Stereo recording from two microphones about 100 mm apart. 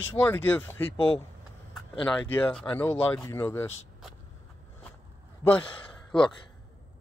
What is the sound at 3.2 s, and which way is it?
Speech, 40° left (ahead or behind).